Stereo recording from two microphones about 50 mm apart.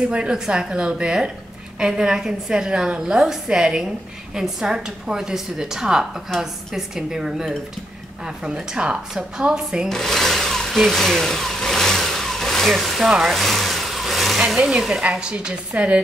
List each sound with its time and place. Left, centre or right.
0.1 s a woman's voice: centre
9.8 s a sound: centre
11.0 s vehicle: centre
13.0 s a woman's voice: centre
13.3 s vehicle: centre
14.9 s a woman's voice: centre